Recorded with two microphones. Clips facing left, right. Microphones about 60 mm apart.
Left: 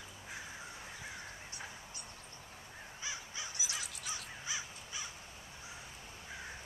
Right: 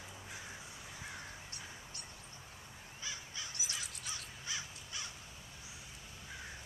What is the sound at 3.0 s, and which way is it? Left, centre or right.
Crow, centre.